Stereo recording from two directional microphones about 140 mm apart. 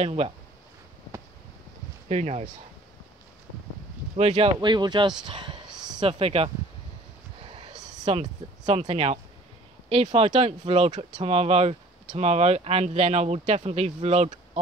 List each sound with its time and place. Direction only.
0.0 s speech: 45° right (ahead or behind)
2.0 s speech: 50° right (ahead or behind)
4.3 s speech: 35° right (ahead or behind)
7.4 s a sound: 40° right (ahead or behind)
8.0 s speech: 50° right (ahead or behind)